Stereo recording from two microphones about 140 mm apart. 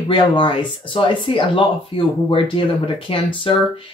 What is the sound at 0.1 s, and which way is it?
Speech, 40° left (ahead or behind).